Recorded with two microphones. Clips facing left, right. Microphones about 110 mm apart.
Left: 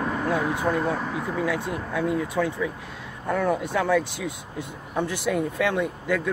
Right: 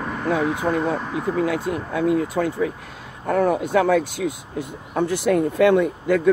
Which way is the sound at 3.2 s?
60° right (ahead or behind).